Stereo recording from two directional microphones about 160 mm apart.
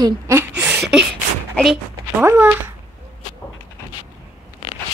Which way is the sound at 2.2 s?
15° right (ahead or behind).